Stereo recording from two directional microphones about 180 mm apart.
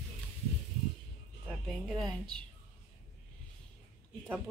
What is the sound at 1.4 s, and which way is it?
Speech, centre (ahead or behind).